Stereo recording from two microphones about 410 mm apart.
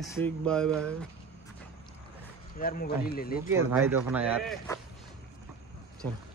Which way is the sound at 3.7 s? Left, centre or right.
Centre.